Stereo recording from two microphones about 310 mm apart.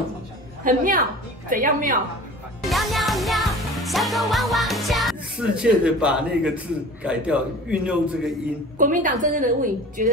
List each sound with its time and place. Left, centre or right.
0.7 s a woman's voice: right
2.6 s music: centre
8.7 s a woman's voice: right